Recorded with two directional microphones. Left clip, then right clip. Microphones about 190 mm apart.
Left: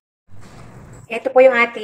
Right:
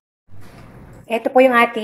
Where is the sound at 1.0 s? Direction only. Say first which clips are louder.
Left 2 dB; 35° right (ahead or behind).